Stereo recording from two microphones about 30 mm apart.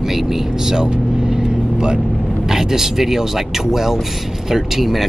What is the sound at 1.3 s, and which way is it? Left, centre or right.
Vehicle, right.